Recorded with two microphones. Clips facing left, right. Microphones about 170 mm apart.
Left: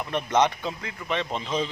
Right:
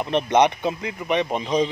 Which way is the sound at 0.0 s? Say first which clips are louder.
Right 5 dB; 20° right (ahead or behind).